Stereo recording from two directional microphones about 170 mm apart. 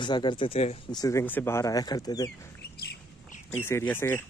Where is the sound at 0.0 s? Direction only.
25° left (ahead or behind).